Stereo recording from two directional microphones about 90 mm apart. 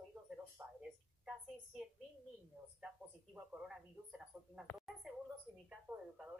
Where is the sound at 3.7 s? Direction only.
10° right (ahead or behind).